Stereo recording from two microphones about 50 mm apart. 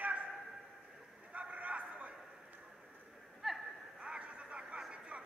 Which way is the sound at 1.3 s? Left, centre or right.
Right.